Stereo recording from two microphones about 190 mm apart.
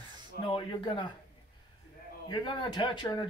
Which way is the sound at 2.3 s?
25° left (ahead or behind).